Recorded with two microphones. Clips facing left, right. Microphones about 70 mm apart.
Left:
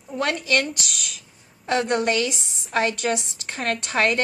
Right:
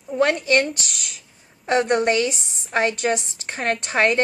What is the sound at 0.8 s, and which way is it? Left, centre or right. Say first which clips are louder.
Speech: left 1 dB; centre.